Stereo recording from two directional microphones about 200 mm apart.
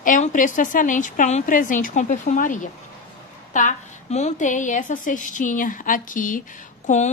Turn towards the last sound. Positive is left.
turn(degrees=35)  # may be behind; listen again after turning